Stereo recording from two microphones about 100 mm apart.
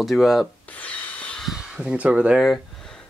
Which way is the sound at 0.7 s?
15° left (ahead or behind).